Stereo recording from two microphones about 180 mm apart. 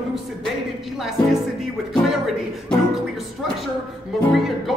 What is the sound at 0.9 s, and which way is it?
Speech, centre (ahead or behind).